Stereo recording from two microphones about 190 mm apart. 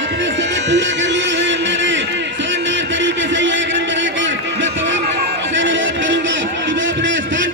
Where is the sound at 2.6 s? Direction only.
75° right (ahead or behind).